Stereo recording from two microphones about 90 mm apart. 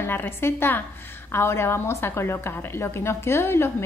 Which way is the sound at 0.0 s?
25° left (ahead or behind).